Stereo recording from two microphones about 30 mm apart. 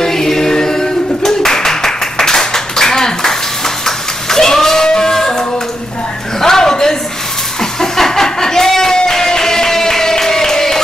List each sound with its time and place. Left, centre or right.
0.0 s singing: centre
3.8 s goat: centre
4.8 s music: left
6.4 s a sound: centre